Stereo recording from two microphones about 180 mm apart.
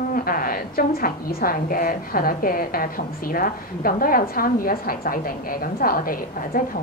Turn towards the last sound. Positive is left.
turn(degrees=50)  # may be behind; listen again after turning